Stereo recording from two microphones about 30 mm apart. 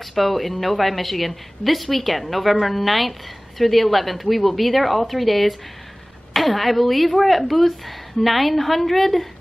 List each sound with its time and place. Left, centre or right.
0.1 s a woman's voice: centre